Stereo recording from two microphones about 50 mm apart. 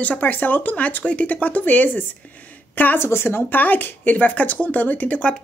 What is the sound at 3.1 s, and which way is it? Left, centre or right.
Speech, left.